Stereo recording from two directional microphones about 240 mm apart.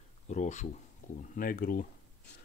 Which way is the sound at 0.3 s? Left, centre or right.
Left.